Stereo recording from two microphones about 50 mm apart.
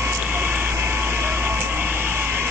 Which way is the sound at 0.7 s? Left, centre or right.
Right.